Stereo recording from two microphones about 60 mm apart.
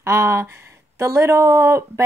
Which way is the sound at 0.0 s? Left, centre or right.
Right.